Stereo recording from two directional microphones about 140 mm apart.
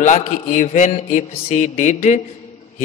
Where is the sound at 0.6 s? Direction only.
45° left (ahead or behind).